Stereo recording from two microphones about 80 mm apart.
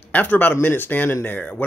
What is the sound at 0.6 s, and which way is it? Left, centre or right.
Speech, left.